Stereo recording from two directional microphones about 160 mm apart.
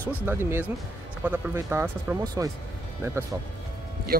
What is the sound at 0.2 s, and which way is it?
Speech, 15° right (ahead or behind).